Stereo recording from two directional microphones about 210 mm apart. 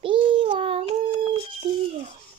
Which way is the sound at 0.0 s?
25° right (ahead or behind).